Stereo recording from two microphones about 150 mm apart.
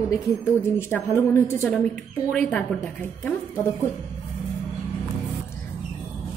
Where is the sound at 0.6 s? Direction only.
15° left (ahead or behind).